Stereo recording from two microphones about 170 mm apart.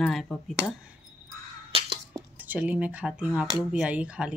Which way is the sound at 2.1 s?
10° right (ahead or behind).